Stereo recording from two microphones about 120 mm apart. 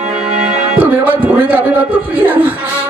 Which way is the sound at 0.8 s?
15° right (ahead or behind).